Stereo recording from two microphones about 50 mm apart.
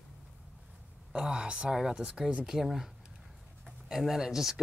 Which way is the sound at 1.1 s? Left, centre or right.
Centre.